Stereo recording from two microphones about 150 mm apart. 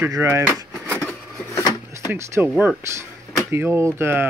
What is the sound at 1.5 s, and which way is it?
Drawer open or close, 25° left (ahead or behind).